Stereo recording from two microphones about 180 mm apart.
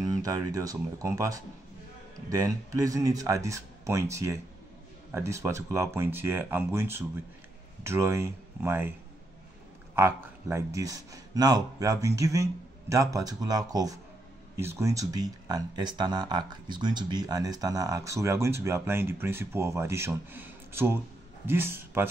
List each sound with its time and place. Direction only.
0.1 s speech: 20° right (ahead or behind)
9.9 s speech: 15° right (ahead or behind)